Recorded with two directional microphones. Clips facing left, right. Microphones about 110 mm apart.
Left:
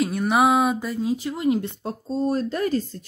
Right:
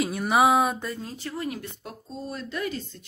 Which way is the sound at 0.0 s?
Centre (ahead or behind).